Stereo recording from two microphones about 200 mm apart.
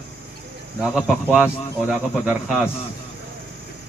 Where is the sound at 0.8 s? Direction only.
5° right (ahead or behind).